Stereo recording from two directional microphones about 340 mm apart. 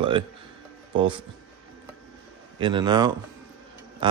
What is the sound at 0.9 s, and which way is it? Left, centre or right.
Speech, centre.